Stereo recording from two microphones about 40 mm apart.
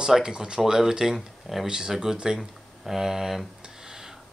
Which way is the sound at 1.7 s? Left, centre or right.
Centre.